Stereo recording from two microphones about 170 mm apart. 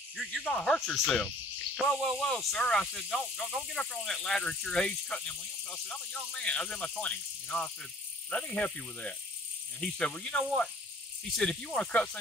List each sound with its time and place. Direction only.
0.1 s speech: centre (ahead or behind)